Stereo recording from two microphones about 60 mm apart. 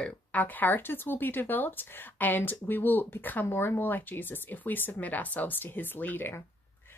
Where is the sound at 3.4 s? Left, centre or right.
Left.